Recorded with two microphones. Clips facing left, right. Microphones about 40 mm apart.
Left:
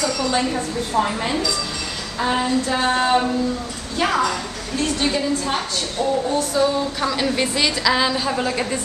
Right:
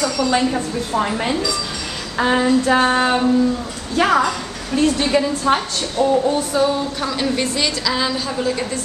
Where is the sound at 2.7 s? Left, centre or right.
Right.